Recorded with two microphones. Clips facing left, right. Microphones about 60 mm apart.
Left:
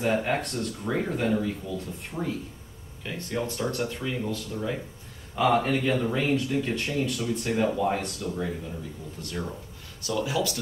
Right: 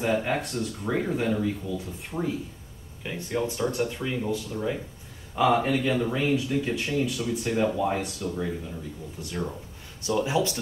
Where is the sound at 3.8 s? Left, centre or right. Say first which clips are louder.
Right 2 dB; centre.